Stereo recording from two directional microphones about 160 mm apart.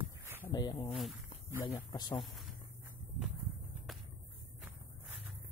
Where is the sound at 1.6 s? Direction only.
30° left (ahead or behind).